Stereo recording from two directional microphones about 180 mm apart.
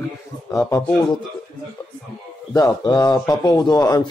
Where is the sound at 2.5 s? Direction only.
25° left (ahead or behind).